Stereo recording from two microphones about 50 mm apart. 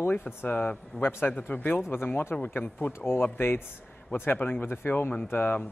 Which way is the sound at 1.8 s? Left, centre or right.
Left.